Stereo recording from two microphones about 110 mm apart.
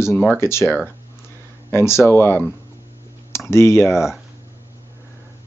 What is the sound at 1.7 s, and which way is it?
Speech, 25° left (ahead or behind).